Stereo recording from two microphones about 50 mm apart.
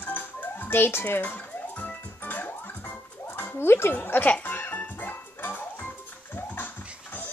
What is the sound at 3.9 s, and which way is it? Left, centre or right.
Music, left.